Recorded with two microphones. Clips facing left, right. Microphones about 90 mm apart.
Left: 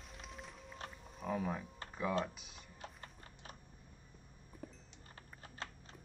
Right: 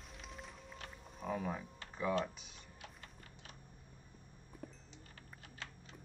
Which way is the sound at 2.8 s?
40° left (ahead or behind).